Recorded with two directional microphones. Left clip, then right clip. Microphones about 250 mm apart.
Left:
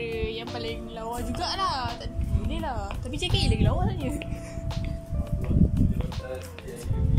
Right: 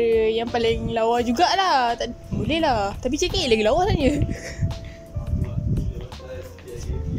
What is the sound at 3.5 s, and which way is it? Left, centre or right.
Speech, right.